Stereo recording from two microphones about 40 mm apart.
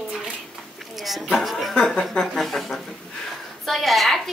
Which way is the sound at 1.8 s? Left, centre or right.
Left.